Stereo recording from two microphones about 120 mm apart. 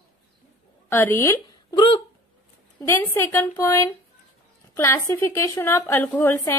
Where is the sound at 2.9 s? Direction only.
20° left (ahead or behind).